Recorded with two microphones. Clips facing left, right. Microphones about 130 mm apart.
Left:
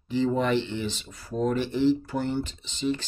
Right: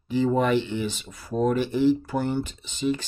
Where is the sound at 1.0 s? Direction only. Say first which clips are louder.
Right 3 dB; 55° right (ahead or behind).